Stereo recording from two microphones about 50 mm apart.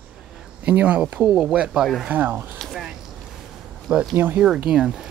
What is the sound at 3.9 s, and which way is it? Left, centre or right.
Speech, centre.